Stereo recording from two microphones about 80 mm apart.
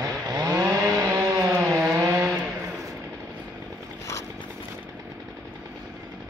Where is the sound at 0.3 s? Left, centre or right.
Right.